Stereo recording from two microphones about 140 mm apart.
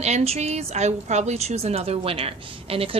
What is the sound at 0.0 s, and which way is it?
A woman's voice, 50° right (ahead or behind).